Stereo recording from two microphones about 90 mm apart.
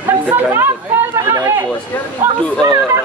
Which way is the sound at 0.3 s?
20° right (ahead or behind).